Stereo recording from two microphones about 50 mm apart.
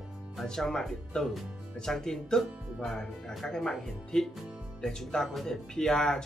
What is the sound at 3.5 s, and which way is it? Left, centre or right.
Speech, centre.